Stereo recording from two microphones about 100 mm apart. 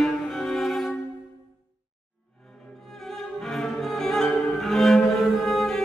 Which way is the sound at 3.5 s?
5° left (ahead or behind).